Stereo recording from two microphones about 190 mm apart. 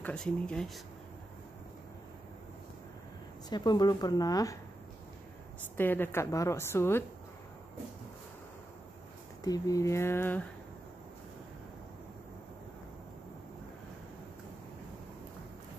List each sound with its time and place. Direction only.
0.0 s speech: 5° left (ahead or behind)
3.4 s speech: 20° left (ahead or behind)
5.8 s a woman's voice: 10° left (ahead or behind)
9.4 s a woman's voice: 20° left (ahead or behind)